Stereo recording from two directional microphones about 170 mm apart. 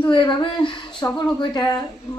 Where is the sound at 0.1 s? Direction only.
30° left (ahead or behind).